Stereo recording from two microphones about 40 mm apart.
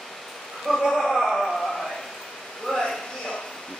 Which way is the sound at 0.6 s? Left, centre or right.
Centre.